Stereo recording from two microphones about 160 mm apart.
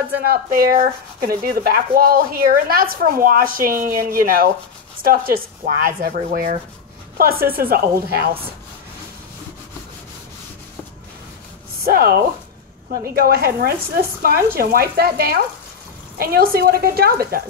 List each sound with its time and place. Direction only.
0.2 s speech: 70° right (ahead or behind)
0.7 s rub: 65° right (ahead or behind)
7.2 s speech: 70° right (ahead or behind)
11.8 s speech: 75° right (ahead or behind)